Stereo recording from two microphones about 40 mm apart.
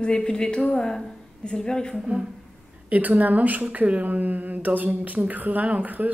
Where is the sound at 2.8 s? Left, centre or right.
Right.